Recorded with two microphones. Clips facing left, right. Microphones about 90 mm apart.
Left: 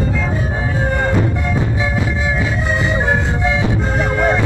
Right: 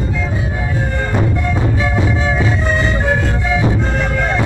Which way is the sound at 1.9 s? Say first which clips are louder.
Right 2 dB; centre (ahead or behind).